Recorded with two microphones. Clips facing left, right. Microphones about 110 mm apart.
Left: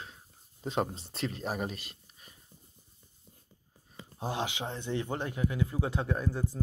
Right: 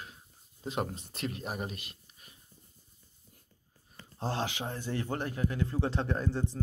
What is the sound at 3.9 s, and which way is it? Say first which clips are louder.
Speech: right 1 dB; 10° left (ahead or behind).